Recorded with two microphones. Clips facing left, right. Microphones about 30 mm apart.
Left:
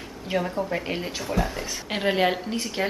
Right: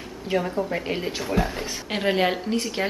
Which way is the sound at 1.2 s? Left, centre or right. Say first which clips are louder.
Right 1 dB; centre.